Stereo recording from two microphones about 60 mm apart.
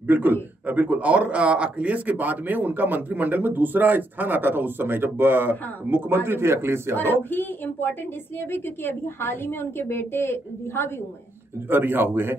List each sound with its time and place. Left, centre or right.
0.0 s a man's voice: right
7.2 s a woman's voice: left
11.7 s speech: right